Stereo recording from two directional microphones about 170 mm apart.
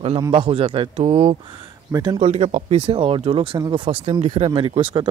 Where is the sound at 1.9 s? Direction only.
25° right (ahead or behind).